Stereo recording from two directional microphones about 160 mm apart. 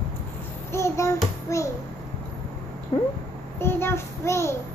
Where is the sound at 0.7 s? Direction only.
20° left (ahead or behind).